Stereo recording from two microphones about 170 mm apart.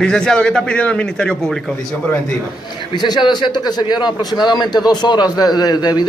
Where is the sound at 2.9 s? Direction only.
25° left (ahead or behind).